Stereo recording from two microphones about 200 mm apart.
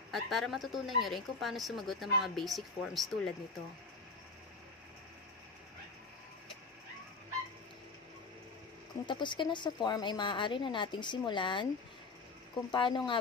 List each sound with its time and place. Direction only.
0.1 s speech: centre (ahead or behind)
9.0 s a woman's voice: 25° left (ahead or behind)
12.7 s a woman's voice: 25° left (ahead or behind)